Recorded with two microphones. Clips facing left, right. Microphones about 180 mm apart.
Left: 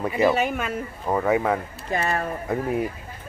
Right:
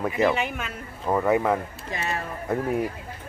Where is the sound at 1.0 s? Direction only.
5° left (ahead or behind).